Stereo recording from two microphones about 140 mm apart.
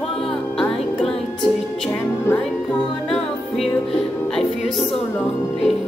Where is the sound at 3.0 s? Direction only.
Centre (ahead or behind).